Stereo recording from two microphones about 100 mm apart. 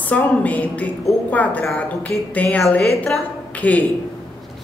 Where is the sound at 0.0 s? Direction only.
15° left (ahead or behind).